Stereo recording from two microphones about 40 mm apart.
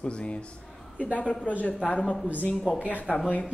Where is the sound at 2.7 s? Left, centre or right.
Left.